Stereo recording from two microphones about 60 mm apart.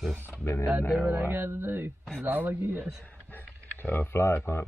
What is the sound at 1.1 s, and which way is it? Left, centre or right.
Speech, right.